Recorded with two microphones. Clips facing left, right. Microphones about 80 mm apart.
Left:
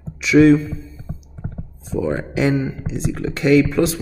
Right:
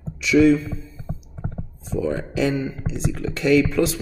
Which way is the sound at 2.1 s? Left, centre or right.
Left.